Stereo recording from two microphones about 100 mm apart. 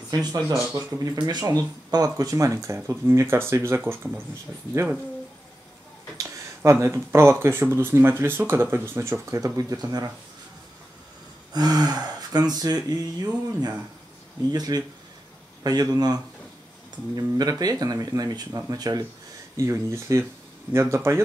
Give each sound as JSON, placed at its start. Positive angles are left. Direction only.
{"t": 0.1, "sound": "speech", "side_deg": -45}
{"t": 6.1, "sound": "speech", "side_deg": -30}
{"t": 11.5, "sound": "speech", "side_deg": -40}